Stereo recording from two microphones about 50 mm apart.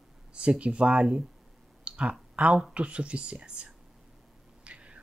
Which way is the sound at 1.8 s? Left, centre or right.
Right.